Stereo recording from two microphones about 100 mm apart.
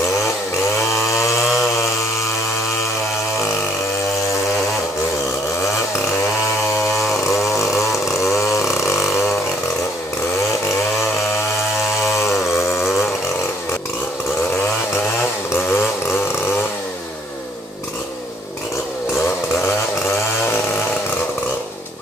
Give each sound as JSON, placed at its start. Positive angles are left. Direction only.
{"t": 7.9, "sound": "chainsaw", "side_deg": 0}
{"t": 8.7, "sound": "a sound", "side_deg": 25}
{"t": 12.2, "sound": "chainsaw", "side_deg": 25}
{"t": 15.5, "sound": "vehicle", "side_deg": 25}